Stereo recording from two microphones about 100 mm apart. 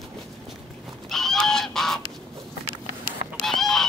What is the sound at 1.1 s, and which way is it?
Goose, 5° left (ahead or behind).